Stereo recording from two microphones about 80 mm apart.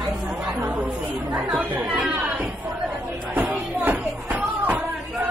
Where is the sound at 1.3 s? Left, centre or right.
Centre.